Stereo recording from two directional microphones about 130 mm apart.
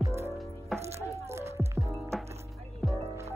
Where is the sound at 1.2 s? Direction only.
20° right (ahead or behind).